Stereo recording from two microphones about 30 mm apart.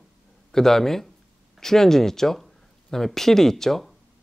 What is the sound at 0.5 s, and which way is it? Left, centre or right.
Speech, centre.